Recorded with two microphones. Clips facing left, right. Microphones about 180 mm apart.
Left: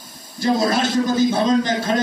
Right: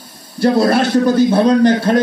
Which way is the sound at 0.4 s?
60° right (ahead or behind).